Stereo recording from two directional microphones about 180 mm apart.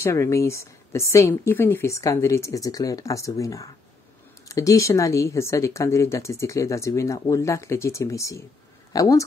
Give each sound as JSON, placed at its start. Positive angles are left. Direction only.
{"t": 0.0, "sound": "speech", "side_deg": 15}